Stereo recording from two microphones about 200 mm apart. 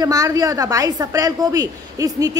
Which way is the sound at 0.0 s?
15° right (ahead or behind).